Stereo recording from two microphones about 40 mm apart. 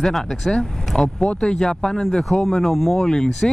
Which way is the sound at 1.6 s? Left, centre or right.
Centre.